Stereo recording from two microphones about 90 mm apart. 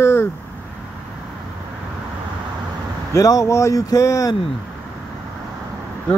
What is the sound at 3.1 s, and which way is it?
Speech, 40° left (ahead or behind).